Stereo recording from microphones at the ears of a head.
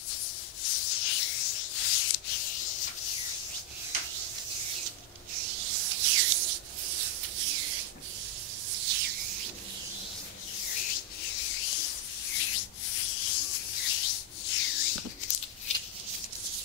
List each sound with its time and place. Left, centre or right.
0.1 s rub: left
4.1 s rub: right
8.7 s a sound: right
10.6 s rub: left